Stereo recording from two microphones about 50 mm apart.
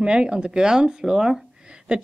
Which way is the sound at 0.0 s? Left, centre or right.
Centre.